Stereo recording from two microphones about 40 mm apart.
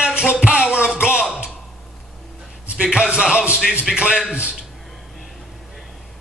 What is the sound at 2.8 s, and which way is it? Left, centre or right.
Music, right.